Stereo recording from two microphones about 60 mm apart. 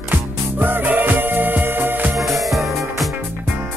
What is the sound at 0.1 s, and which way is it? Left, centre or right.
Music, right.